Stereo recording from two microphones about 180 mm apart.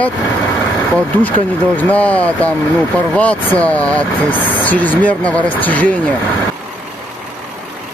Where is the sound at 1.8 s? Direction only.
10° left (ahead or behind).